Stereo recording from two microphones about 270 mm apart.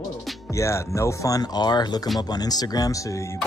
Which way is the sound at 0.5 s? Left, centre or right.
Centre.